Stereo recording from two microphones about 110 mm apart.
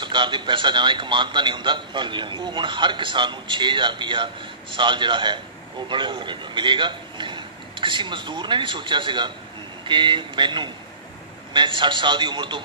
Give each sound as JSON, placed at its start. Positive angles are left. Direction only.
{"t": 0.0, "sound": "a man's voice", "side_deg": -45}